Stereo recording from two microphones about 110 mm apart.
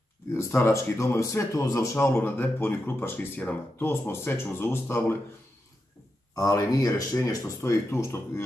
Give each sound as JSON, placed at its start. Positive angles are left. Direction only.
{"t": 0.3, "sound": "speech", "side_deg": 20}
{"t": 6.3, "sound": "speech", "side_deg": 35}